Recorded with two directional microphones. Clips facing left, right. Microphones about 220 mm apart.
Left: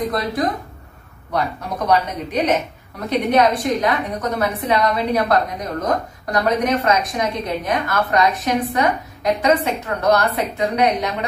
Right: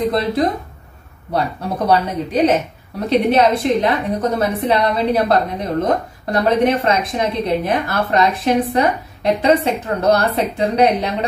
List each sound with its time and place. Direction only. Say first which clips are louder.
0.1 s a woman's voice: right 4 dB; 25° right (ahead or behind)
1.9 s a woman's voice: right 2 dB; 30° right (ahead or behind)